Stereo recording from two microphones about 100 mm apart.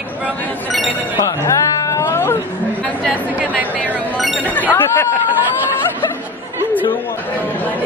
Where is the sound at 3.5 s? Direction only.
15° right (ahead or behind).